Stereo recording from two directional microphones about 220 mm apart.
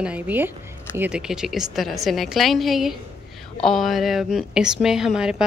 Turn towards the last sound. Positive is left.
turn(degrees=-5)  # may be behind; listen again after turning